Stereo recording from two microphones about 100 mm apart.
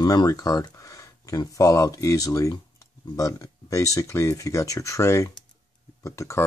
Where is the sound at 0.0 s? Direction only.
40° left (ahead or behind).